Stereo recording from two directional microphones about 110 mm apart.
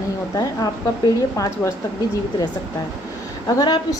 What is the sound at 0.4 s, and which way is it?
A woman's voice, 35° left (ahead or behind).